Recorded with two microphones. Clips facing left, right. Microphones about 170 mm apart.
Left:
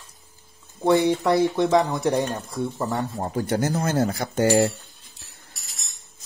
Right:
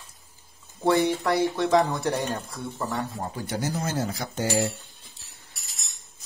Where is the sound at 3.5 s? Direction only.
55° left (ahead or behind).